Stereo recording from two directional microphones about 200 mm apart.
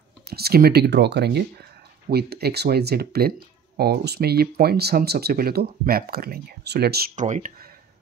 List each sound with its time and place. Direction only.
0.3 s speech: 50° right (ahead or behind)
7.2 s speech: 35° right (ahead or behind)